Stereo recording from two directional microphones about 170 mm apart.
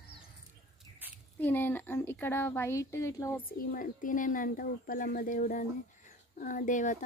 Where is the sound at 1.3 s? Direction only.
10° left (ahead or behind).